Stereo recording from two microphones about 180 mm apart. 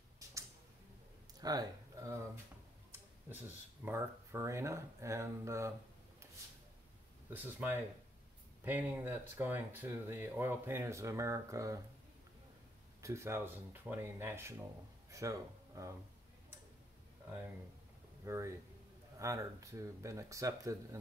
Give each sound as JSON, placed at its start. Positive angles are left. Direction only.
{"t": 0.2, "sound": "a sound", "side_deg": -20}
{"t": 1.4, "sound": "speech", "side_deg": -20}
{"t": 3.3, "sound": "speech", "side_deg": -10}
{"t": 7.2, "sound": "speech", "side_deg": -10}
{"t": 13.0, "sound": "speech", "side_deg": -15}
{"t": 18.2, "sound": "speech", "side_deg": -15}